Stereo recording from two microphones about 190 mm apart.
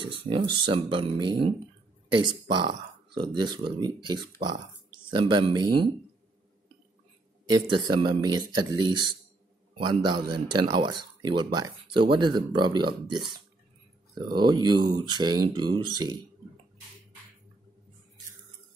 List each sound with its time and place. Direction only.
0.0 s speech: 25° right (ahead or behind)
2.5 s speech: 25° right (ahead or behind)
7.4 s speech: 20° right (ahead or behind)